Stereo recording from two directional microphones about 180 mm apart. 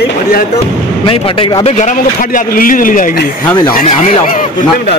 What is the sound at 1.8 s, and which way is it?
A man's voice, 45° left (ahead or behind).